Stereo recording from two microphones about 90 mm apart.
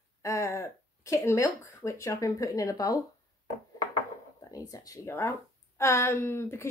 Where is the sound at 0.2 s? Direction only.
35° left (ahead or behind).